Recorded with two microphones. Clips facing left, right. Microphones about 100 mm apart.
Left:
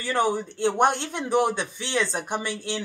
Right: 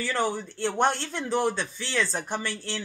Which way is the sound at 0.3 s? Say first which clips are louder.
Left 5 dB; 15° left (ahead or behind).